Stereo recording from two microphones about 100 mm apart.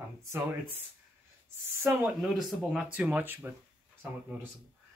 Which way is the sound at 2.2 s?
Centre (ahead or behind).